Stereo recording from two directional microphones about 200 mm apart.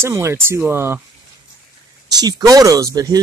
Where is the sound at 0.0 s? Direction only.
15° right (ahead or behind).